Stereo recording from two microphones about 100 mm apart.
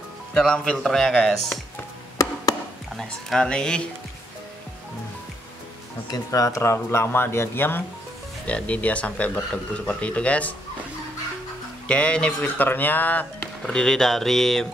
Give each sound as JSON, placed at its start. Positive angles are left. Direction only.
{"t": 0.3, "sound": "speech", "side_deg": 5}
{"t": 3.0, "sound": "speech", "side_deg": 5}
{"t": 6.0, "sound": "speech", "side_deg": 35}
{"t": 11.9, "sound": "speech", "side_deg": 10}